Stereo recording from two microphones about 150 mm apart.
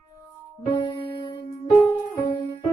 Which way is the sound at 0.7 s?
35° left (ahead or behind).